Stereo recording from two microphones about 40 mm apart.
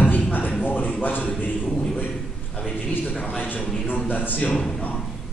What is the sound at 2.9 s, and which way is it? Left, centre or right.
Speech, left.